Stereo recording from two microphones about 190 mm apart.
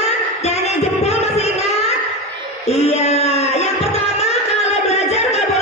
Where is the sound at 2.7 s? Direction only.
35° left (ahead or behind).